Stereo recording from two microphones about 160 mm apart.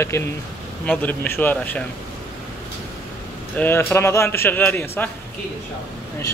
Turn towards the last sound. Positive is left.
turn(degrees=15)  # may be behind; listen again after turning